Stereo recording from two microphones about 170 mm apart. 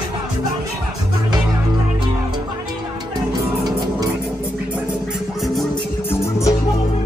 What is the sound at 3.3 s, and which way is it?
Music, 20° right (ahead or behind).